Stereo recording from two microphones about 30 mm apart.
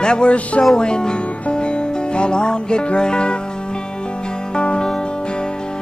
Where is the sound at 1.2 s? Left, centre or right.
Left.